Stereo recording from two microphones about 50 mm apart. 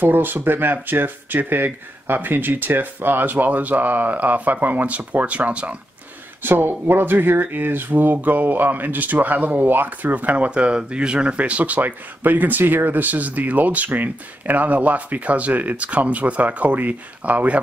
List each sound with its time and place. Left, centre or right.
0.0 s speech: right
6.4 s speech: right